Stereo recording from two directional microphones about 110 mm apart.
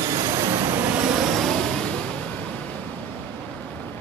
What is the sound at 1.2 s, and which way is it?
Vehicle, centre (ahead or behind).